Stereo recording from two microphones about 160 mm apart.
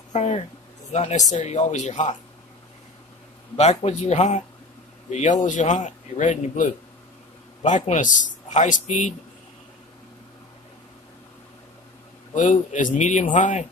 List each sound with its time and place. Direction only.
0.1 s a sound: 45° left (ahead or behind)
0.9 s a man's voice: 50° left (ahead or behind)
3.5 s a man's voice: 45° left (ahead or behind)
12.4 s a man's voice: 50° left (ahead or behind)